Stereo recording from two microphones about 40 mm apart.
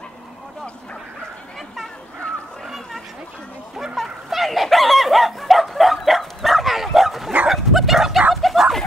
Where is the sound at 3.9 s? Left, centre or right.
Centre.